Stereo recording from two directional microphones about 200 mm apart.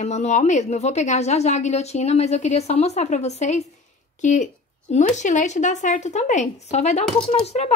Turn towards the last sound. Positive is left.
turn(degrees=30)  # may be behind; listen again after turning